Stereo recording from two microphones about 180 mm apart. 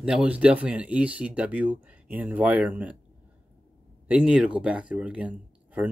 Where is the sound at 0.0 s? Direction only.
5° right (ahead or behind).